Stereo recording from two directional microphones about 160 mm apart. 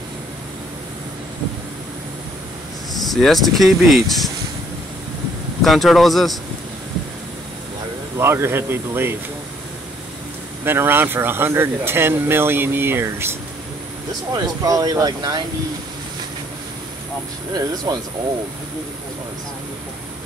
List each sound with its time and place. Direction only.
3.0 s speech: centre (ahead or behind)
5.6 s speech: centre (ahead or behind)
8.2 s speech: 15° right (ahead or behind)
10.6 s speech: 15° right (ahead or behind)
14.3 s speech: 25° right (ahead or behind)
17.9 s speech: 25° right (ahead or behind)